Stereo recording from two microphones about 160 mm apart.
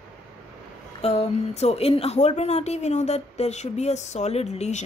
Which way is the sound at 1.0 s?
40° left (ahead or behind).